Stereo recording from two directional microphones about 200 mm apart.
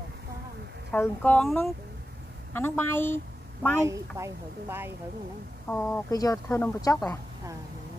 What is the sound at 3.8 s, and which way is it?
A woman's voice, 15° right (ahead or behind).